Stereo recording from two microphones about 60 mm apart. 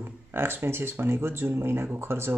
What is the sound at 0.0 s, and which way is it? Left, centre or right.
Speech, right.